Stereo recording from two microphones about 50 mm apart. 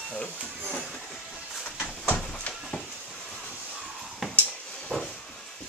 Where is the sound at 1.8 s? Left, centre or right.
Left.